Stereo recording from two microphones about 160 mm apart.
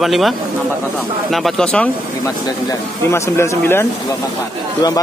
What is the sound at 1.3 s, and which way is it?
Speech, 5° left (ahead or behind).